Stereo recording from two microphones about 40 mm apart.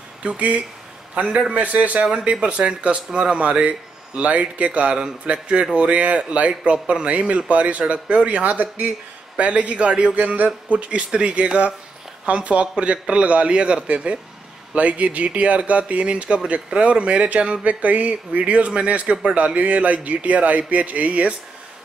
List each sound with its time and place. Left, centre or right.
0.2 s a man's voice: right
2.0 s a man's voice: right
3.3 s speech: right
9.4 s speech: right
10.1 s a man's voice: right